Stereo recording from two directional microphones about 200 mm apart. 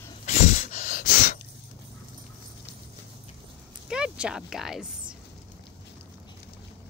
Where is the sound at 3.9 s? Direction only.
5° right (ahead or behind).